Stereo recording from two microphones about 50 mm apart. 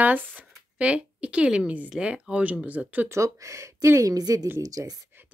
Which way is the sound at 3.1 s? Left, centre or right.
Right.